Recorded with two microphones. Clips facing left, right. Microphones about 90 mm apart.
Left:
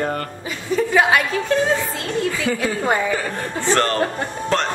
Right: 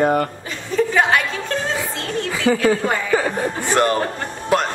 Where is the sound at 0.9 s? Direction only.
5° left (ahead or behind).